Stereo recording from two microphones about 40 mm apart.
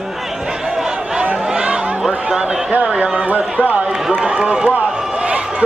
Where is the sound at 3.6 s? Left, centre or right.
Right.